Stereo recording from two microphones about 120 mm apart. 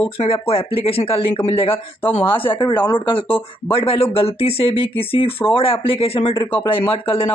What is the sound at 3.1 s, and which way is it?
Speech, 45° left (ahead or behind).